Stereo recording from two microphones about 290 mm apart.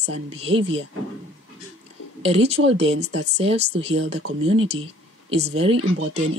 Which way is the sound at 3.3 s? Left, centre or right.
Right.